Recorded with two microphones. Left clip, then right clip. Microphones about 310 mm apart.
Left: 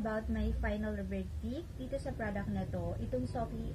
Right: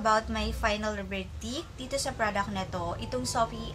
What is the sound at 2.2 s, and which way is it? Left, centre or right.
Speech, right.